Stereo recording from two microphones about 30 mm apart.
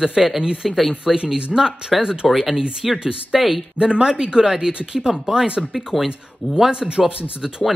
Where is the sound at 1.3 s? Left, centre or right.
Right.